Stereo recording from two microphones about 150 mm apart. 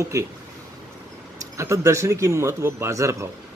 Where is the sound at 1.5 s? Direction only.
20° right (ahead or behind).